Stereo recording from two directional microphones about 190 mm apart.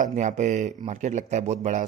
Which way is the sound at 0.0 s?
40° right (ahead or behind).